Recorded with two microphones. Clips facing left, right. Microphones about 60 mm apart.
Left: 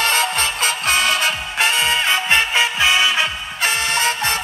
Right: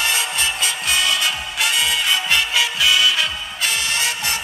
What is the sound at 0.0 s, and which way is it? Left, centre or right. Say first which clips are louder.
Music: left 3 dB; left.